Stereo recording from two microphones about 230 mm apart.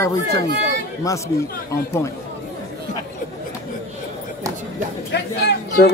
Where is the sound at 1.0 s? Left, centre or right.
Centre.